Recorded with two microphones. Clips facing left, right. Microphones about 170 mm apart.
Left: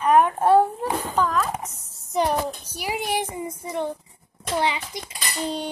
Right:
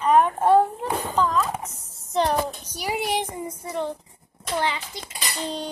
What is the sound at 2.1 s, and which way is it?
A child's voice, 10° left (ahead or behind).